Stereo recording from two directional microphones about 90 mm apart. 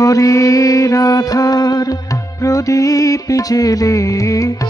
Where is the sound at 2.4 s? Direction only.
40° left (ahead or behind).